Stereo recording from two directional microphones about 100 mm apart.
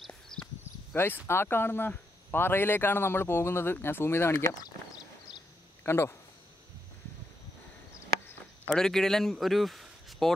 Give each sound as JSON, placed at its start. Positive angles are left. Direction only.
{"t": 0.0, "sound": "horse", "side_deg": 5}
{"t": 0.9, "sound": "speech", "side_deg": 20}
{"t": 5.9, "sound": "speech", "side_deg": 25}
{"t": 8.6, "sound": "speech", "side_deg": 5}